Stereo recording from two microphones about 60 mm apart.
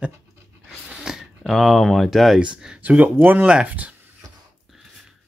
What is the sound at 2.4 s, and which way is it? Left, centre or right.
Speech, centre.